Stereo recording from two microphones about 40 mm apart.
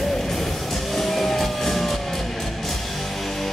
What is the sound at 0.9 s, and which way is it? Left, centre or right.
Music, centre.